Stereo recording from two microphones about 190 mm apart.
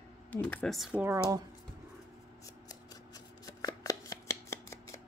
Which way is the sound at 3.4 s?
20° left (ahead or behind).